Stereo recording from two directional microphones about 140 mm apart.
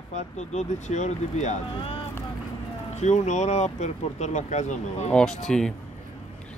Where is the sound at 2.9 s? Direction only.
55° left (ahead or behind).